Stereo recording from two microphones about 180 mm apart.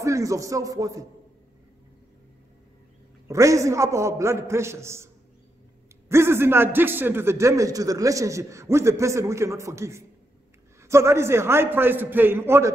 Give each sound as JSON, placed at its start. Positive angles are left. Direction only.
{"t": 0.0, "sound": "a man's voice", "side_deg": -15}
{"t": 3.3, "sound": "a man's voice", "side_deg": -15}